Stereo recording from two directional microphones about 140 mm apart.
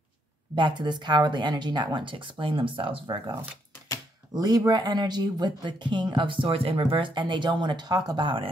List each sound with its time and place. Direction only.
0.6 s speech: 35° right (ahead or behind)
4.3 s speech: 25° right (ahead or behind)